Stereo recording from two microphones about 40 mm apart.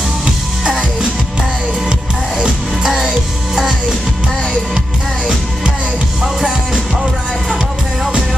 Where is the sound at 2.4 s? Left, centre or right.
Centre.